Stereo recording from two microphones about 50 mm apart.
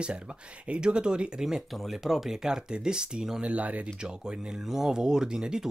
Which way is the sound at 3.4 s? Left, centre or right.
Right.